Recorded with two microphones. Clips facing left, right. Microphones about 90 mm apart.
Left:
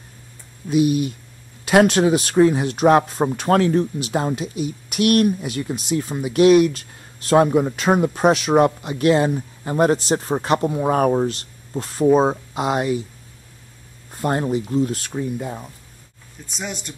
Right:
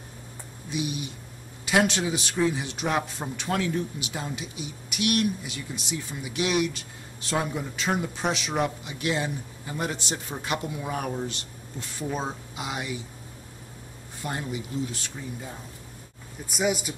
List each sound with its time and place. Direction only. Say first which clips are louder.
0.7 s speech: left 13 dB; 55° left (ahead or behind)
14.1 s speech: left 11 dB; 50° left (ahead or behind); by 15.5 s 65° left (ahead or behind)
16.4 s speech: right 5 dB; 5° right (ahead or behind)